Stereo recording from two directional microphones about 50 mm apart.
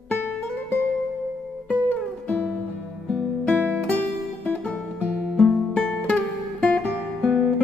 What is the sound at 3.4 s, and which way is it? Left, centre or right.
Music, left.